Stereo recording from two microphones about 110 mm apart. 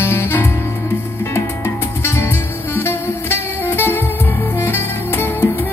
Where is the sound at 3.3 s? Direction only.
20° left (ahead or behind).